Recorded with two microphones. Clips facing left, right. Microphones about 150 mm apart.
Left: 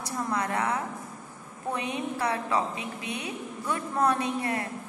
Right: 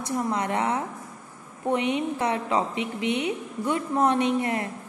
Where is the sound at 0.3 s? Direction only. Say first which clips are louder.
Right 1 dB; 25° right (ahead or behind).